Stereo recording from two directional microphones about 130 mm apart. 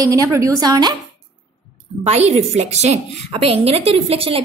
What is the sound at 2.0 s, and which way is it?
A woman's voice, 55° right (ahead or behind).